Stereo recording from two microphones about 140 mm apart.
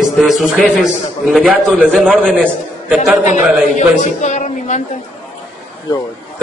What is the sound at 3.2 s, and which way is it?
Speech, 60° left (ahead or behind).